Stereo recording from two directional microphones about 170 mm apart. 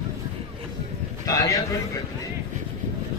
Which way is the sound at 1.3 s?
20° left (ahead or behind).